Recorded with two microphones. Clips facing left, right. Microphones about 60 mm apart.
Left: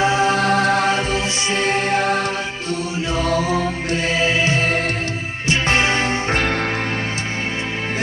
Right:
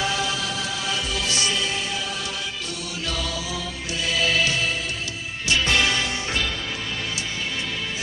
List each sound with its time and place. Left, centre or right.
0.0 s music: left